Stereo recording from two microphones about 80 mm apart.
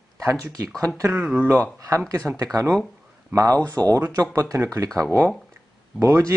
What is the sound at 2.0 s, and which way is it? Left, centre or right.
Speech, right.